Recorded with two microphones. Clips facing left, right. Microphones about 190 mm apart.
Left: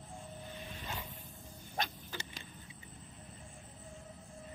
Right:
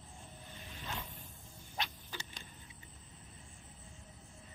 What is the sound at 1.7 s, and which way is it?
Frog, 45° left (ahead or behind).